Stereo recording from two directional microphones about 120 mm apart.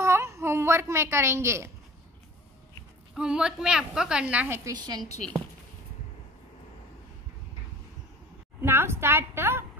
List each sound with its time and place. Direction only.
0.0 s a sound: 25° right (ahead or behind)
3.2 s a woman's voice: 5° right (ahead or behind)
4.6 s a woman's voice: 35° right (ahead or behind)
8.6 s a woman's voice: 20° right (ahead or behind)